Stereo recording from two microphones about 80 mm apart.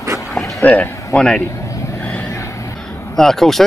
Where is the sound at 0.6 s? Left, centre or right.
Left.